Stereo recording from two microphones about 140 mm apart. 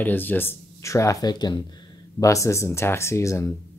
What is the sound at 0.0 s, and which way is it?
Speech, 15° left (ahead or behind).